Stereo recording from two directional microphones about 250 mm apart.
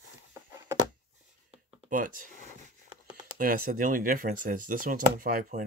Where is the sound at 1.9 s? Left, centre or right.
Right.